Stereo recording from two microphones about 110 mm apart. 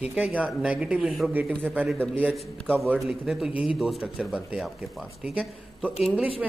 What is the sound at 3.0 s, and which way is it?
A man's voice, 5° right (ahead or behind).